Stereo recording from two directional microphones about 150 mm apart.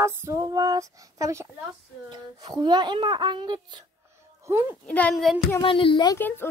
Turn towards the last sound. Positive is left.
turn(degrees=15)  # may be behind; listen again after turning